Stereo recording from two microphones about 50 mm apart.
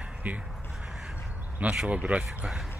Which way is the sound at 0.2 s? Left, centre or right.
Right.